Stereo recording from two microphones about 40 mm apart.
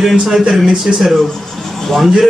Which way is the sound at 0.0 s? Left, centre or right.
Centre.